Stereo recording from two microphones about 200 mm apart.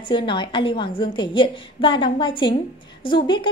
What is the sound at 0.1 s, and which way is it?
A woman's voice, 25° left (ahead or behind).